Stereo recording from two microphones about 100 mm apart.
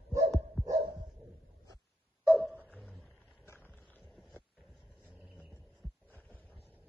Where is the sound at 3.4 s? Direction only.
25° left (ahead or behind).